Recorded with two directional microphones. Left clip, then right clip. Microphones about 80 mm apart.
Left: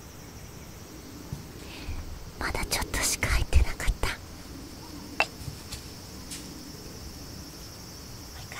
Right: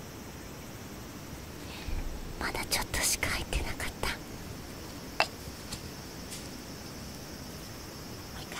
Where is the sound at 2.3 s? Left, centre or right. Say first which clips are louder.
Left 2 dB; centre.